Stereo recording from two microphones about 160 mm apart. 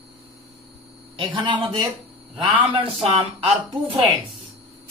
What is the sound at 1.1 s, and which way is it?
A man's voice, 30° right (ahead or behind).